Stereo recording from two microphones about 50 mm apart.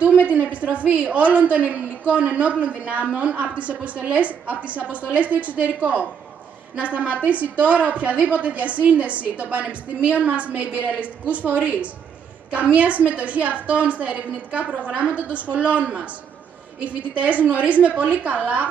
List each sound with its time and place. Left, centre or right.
0.0 s a woman's voice: right